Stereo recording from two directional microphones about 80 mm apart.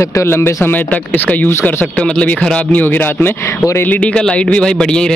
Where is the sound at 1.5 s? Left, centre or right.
Left.